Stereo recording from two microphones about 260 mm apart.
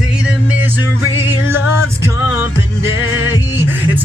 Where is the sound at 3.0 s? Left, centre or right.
Left.